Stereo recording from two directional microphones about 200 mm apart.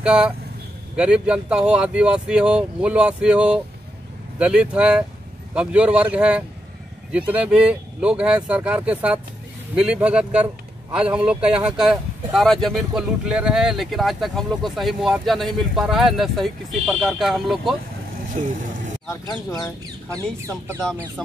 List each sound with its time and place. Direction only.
0.0 s a man's voice: 5° right (ahead or behind)
18.3 s vehicle: 40° right (ahead or behind)
19.0 s speech: 15° left (ahead or behind)
20.2 s speech: 15° right (ahead or behind)